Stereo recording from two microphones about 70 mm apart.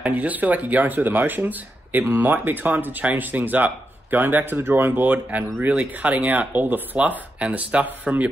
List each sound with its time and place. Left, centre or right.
0.0 s speech: right